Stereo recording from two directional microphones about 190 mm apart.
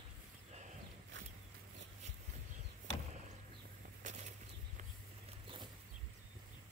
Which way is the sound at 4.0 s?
40° right (ahead or behind).